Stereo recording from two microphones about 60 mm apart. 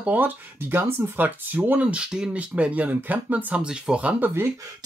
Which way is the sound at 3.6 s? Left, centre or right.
Centre.